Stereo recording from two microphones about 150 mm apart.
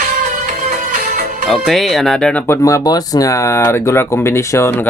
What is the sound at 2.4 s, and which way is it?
Speech, 20° left (ahead or behind).